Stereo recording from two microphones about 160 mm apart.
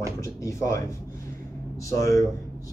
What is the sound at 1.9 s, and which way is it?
Speech, 20° left (ahead or behind).